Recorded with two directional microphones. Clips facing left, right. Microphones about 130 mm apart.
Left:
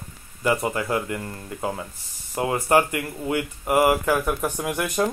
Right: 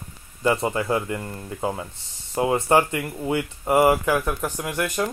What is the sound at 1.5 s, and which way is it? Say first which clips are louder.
Speech: right 2 dB; 20° right (ahead or behind).